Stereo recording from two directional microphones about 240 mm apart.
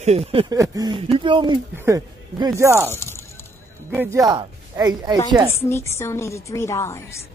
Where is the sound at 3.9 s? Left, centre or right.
Centre.